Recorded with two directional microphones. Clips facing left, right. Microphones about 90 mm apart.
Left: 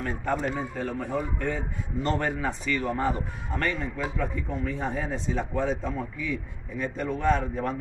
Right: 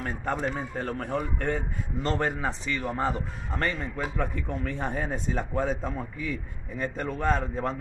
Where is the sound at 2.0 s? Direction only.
30° right (ahead or behind).